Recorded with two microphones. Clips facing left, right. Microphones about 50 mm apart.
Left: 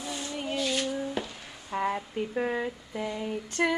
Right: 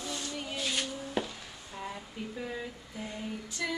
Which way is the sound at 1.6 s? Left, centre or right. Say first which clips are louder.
Left 12 dB; left.